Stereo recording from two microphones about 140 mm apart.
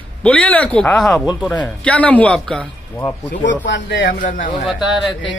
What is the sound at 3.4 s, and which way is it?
Speech, 70° left (ahead or behind).